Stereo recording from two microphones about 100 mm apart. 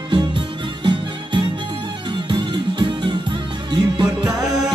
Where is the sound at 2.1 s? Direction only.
50° right (ahead or behind).